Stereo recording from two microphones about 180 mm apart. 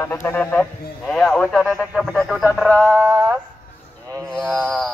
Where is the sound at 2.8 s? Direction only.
20° right (ahead or behind).